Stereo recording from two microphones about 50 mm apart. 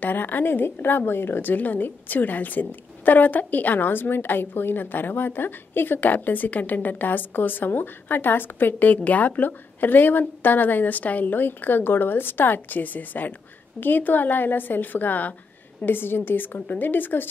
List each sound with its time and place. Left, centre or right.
0.0 s a woman's voice: left